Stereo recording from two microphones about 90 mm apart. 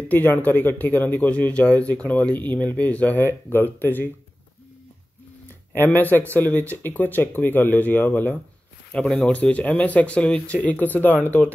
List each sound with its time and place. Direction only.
0.1 s a man's voice: 20° left (ahead or behind)
5.8 s a man's voice: 20° left (ahead or behind)